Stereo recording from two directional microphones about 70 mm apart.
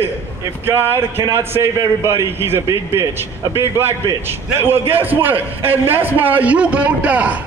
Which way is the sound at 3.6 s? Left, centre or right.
Right.